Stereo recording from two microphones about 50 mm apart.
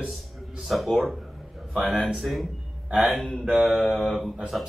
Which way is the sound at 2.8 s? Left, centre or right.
Right.